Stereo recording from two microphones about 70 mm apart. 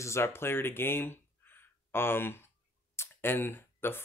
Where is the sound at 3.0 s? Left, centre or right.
Left.